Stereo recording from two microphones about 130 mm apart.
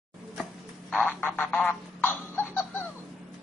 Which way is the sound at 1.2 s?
15° left (ahead or behind).